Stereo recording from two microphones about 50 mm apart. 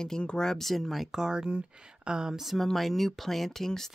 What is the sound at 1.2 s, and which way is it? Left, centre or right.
Speech, centre.